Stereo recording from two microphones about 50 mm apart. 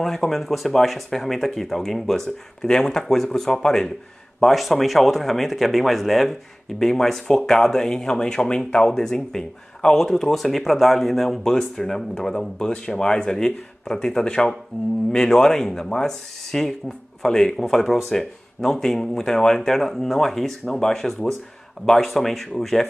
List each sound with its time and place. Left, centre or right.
0.0 s speech: centre